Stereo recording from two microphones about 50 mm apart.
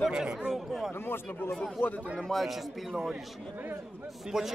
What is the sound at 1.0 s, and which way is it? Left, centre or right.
Speech, left.